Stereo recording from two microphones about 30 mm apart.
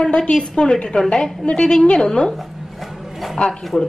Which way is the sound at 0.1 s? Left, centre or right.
Left.